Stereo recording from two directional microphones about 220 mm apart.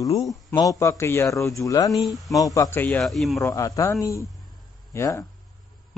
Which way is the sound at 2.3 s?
15° left (ahead or behind).